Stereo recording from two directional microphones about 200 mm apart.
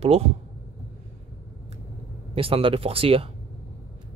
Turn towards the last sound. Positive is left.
turn(degrees=-30)  # may be behind; listen again after turning